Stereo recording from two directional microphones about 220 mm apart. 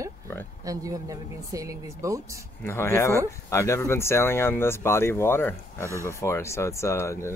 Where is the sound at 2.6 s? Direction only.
10° left (ahead or behind).